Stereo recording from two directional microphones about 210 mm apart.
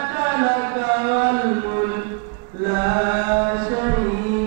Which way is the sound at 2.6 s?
20° right (ahead or behind).